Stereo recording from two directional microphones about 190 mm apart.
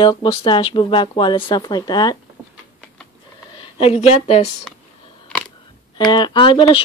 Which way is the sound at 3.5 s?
30° left (ahead or behind).